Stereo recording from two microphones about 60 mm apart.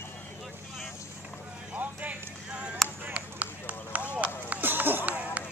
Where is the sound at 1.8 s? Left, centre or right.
Right.